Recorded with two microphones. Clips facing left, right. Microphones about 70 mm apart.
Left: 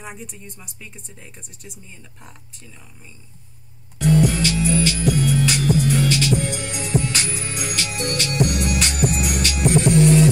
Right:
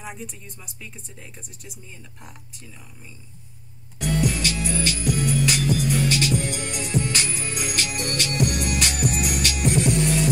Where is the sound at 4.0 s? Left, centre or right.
Left.